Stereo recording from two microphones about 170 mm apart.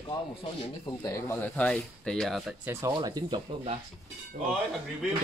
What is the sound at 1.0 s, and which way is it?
Speech, 15° left (ahead or behind).